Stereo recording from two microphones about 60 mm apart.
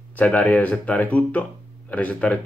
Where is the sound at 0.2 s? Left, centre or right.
Left.